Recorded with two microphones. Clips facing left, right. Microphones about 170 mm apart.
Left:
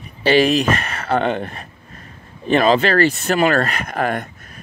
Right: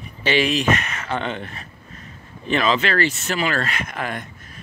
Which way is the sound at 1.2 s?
45° left (ahead or behind).